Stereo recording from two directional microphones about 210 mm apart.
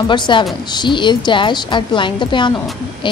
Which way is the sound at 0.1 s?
20° left (ahead or behind).